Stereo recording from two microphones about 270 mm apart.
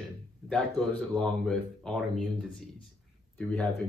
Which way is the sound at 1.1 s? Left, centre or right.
Centre.